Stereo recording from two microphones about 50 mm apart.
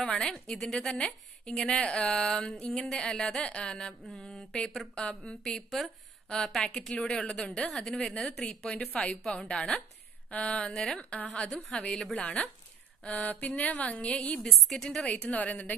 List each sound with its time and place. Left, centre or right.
0.0 s a woman's voice: centre
1.5 s a woman's voice: centre
6.2 s a woman's voice: centre
8.4 s a woman's voice: left
11.3 s a woman's voice: left
14.4 s a woman's voice: centre
15.1 s a woman's voice: left